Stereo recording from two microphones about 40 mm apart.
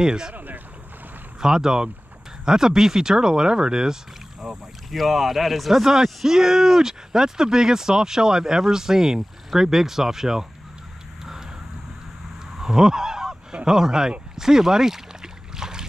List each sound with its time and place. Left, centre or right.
0.0 s speech: centre
1.4 s speech: centre
4.9 s speech: centre
12.5 s honk: centre
13.7 s speech: centre
15.5 s a sound: centre